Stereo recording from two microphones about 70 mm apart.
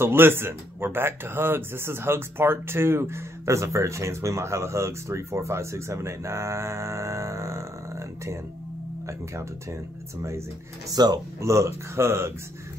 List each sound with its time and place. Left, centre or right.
0.0 s speech: right
10.9 s speech: right
11.4 s speech: right